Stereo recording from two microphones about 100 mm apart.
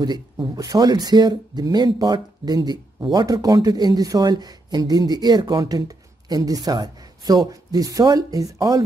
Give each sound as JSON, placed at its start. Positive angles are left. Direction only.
{"t": 0.0, "sound": "speech", "side_deg": -45}